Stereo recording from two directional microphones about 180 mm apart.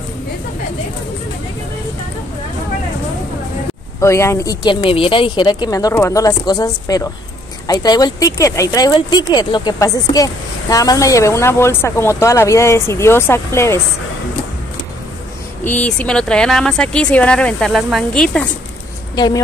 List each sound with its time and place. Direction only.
4.0 s speech: 15° left (ahead or behind)
4.8 s speech: 30° left (ahead or behind); by 13.7 s 15° left (ahead or behind)
15.6 s speech: 10° left (ahead or behind)
19.1 s a woman's voice: 20° left (ahead or behind)